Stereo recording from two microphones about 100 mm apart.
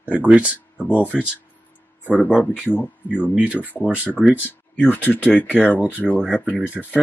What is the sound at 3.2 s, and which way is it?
Speech, 15° right (ahead or behind).